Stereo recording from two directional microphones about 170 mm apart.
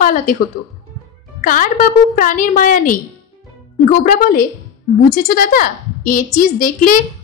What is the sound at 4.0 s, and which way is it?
A woman's voice, 55° left (ahead or behind).